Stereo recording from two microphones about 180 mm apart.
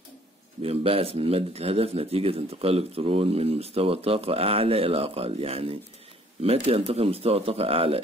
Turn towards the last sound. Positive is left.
turn(degrees=-30)  # may be behind; listen again after turning